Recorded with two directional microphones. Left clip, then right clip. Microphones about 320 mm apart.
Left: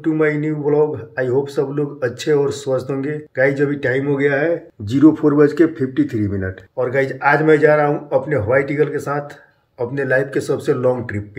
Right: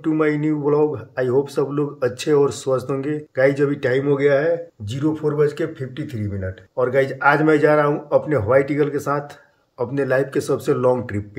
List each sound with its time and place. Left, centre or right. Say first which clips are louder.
0.0 s speech: left 2 dB; centre
4.9 s speech: left 8 dB; centre
6.8 s speech: even; centre